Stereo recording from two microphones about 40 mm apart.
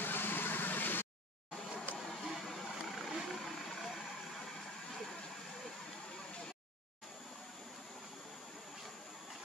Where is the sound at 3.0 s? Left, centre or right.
Centre.